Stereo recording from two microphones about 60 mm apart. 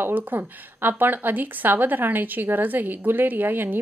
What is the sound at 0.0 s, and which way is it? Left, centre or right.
Speech, right.